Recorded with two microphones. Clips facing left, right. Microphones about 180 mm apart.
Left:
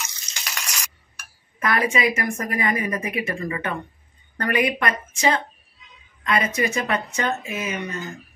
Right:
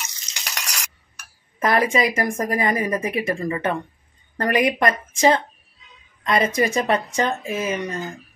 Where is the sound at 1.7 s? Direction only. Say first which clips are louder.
Right 2 dB; 35° right (ahead or behind).